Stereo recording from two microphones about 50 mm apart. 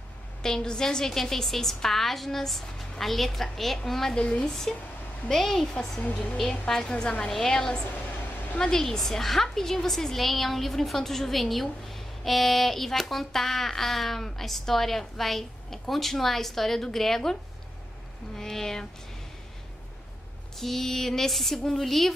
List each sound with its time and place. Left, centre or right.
0.4 s a woman's voice: centre
4.1 s a woman's voice: centre
6.7 s a woman's voice: centre
20.5 s a woman's voice: centre